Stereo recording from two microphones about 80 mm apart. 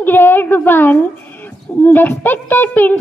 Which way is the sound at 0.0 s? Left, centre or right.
Left.